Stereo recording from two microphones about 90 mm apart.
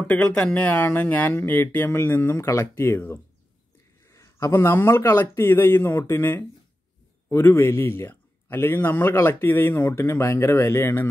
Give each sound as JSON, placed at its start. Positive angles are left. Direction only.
{"t": 0.0, "sound": "a man's voice", "side_deg": 15}
{"t": 2.3, "sound": "a man's voice", "side_deg": 35}